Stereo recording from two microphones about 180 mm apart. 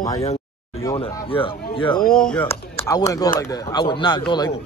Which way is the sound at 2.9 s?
20° left (ahead or behind).